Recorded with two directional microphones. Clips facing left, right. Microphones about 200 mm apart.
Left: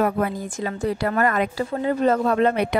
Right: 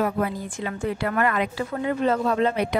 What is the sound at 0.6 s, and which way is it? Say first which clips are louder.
A woman's voice: left 3 dB; 35° left (ahead or behind).